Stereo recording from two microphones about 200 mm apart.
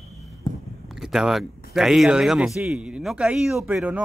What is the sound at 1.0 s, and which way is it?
A man's voice, centre (ahead or behind).